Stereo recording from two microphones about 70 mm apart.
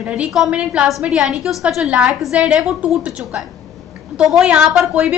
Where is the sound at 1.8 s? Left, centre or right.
Centre.